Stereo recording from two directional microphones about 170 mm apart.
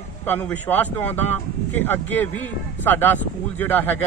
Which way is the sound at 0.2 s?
10° left (ahead or behind).